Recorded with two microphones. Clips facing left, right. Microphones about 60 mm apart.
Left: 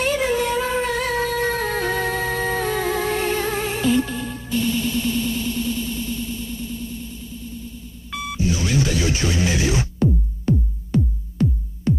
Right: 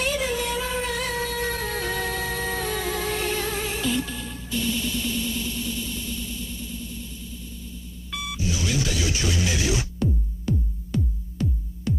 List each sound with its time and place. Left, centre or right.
0.0 s music: left
8.1 s music: left